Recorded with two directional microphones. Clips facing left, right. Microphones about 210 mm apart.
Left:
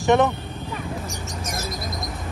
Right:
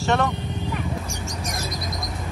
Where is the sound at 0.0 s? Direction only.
15° left (ahead or behind).